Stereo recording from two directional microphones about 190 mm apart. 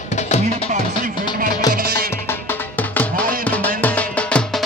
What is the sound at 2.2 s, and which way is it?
Music, 10° left (ahead or behind).